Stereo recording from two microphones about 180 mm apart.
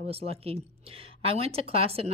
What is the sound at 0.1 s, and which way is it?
A woman's voice, 35° right (ahead or behind).